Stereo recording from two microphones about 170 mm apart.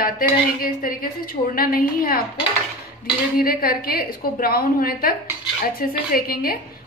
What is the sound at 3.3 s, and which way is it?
Speech, 60° left (ahead or behind).